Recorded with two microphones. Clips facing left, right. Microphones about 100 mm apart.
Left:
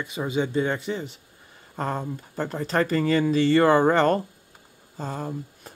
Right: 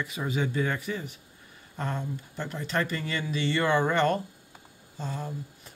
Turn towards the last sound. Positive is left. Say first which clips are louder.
# left 5 dB
turn(degrees=45)  # may be behind; listen again after turning